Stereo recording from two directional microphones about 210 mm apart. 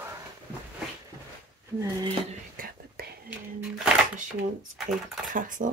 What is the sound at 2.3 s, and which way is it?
Whispering, 40° right (ahead or behind).